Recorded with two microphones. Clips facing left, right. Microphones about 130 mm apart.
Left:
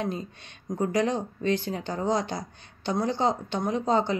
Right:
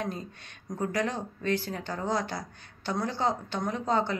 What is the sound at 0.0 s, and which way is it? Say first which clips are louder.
Speech: left 4 dB; 20° left (ahead or behind).